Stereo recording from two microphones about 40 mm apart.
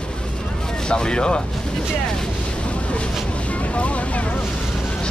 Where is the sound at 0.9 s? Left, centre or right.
Left.